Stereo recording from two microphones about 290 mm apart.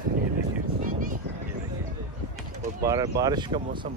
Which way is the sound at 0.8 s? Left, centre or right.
Right.